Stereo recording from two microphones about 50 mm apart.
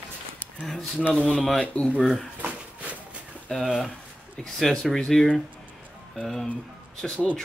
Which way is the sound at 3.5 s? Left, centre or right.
Centre.